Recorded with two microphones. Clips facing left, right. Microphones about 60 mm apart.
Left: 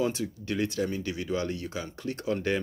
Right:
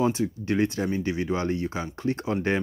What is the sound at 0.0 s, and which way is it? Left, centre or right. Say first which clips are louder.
Speech: right 5 dB; right.